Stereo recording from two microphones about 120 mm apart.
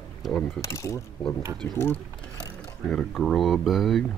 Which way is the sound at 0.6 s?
25° left (ahead or behind).